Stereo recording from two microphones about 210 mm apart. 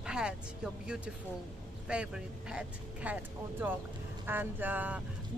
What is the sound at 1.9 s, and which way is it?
Speech, 5° right (ahead or behind).